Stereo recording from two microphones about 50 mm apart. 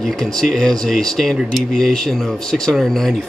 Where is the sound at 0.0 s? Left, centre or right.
Centre.